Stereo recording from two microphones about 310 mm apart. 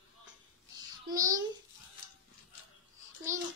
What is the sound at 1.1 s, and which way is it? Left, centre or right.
Babbling, centre.